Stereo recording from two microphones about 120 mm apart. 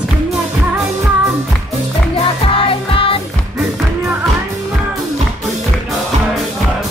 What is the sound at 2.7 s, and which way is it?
Music, 50° left (ahead or behind).